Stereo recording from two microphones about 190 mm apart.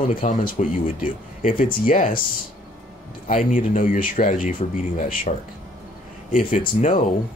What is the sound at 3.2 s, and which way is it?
Speech, 40° left (ahead or behind).